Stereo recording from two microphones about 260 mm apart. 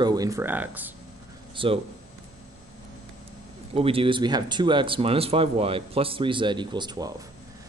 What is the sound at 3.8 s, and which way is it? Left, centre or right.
Speech, right.